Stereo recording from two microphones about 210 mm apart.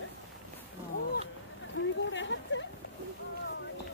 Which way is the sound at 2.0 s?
60° left (ahead or behind).